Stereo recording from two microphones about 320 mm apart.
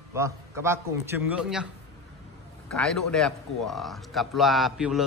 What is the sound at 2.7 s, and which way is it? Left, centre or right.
A man's voice, centre.